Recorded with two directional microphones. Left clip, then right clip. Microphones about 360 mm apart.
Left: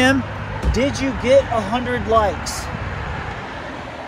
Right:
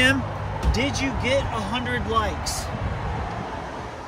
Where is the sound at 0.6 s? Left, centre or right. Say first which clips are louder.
Left 5 dB; right.